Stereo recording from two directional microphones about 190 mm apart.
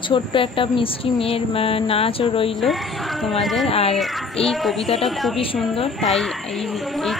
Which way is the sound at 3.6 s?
30° left (ahead or behind).